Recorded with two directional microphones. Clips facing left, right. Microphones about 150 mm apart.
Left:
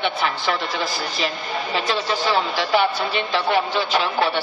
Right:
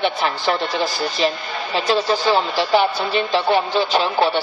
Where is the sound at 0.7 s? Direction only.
Centre (ahead or behind).